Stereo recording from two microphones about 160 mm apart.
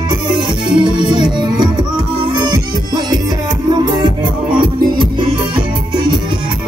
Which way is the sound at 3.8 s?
25° right (ahead or behind).